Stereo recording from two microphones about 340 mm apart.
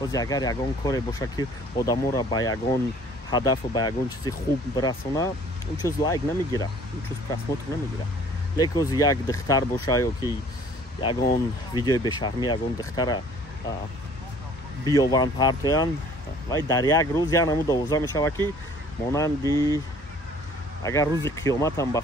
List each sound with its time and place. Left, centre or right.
0.0 s speech: centre
14.9 s speech: centre
20.8 s speech: centre